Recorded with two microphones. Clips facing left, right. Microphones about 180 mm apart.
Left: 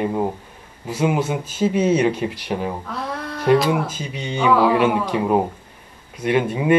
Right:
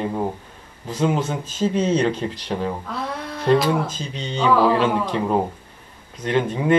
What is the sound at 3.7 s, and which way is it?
Speech, 10° left (ahead or behind).